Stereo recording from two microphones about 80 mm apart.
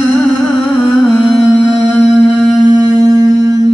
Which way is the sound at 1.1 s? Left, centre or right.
Centre.